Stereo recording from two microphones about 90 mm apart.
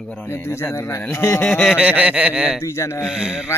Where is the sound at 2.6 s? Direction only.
30° left (ahead or behind).